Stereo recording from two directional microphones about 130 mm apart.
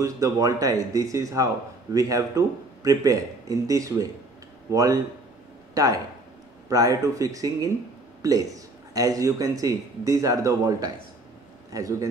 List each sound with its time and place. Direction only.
0.0 s a man's voice: 25° right (ahead or behind)